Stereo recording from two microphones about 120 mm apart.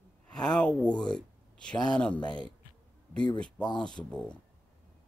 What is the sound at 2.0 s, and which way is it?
Speech, 10° left (ahead or behind).